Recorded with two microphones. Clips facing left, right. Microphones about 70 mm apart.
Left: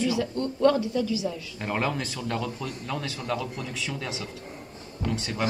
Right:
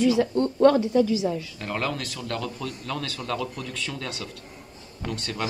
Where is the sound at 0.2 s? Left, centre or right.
Right.